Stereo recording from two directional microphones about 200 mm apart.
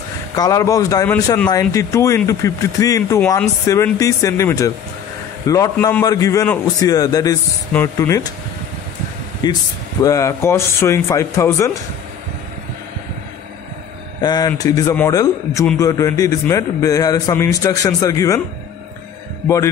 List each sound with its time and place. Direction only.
0.4 s speech: 15° left (ahead or behind)
6.9 s speech: 20° left (ahead or behind)
9.4 s speech: 20° left (ahead or behind)
14.2 s speech: 20° left (ahead or behind)
19.4 s a man's voice: 15° left (ahead or behind)